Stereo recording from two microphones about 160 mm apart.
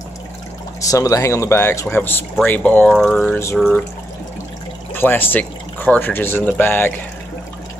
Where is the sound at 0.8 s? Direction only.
20° left (ahead or behind); by 3.3 s 5° left (ahead or behind).